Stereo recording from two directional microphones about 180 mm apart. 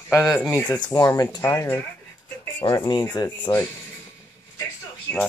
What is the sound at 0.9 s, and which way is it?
Speech, 20° left (ahead or behind).